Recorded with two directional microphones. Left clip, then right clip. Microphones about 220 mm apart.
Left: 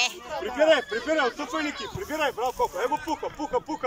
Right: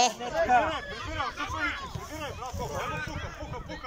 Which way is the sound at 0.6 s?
45° left (ahead or behind).